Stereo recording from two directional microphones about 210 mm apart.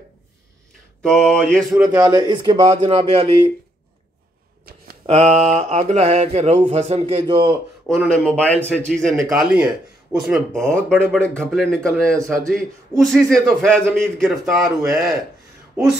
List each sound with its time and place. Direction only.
1.0 s speech: 5° left (ahead or behind)
1.9 s mantra: 15° right (ahead or behind)
5.0 s mantra: 30° right (ahead or behind)
8.1 s speech: 5° left (ahead or behind)